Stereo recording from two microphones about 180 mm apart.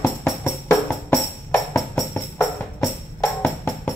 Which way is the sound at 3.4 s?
10° left (ahead or behind).